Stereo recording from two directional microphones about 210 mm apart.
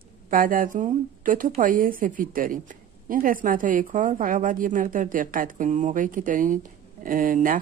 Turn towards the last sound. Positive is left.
turn(degrees=-40)  # may be behind; listen again after turning